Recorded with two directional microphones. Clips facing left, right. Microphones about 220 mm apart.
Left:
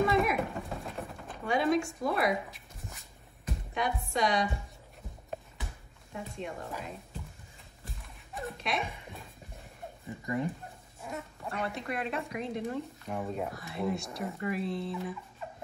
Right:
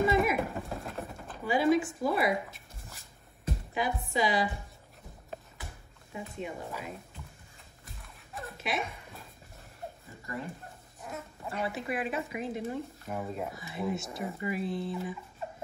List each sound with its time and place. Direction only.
0.0 s a sound: centre (ahead or behind)
3.7 s speech: centre (ahead or behind)
6.1 s speech: 5° right (ahead or behind)
7.8 s a sound: centre (ahead or behind)
10.2 s speech: 20° left (ahead or behind)
11.0 s speech: centre (ahead or behind)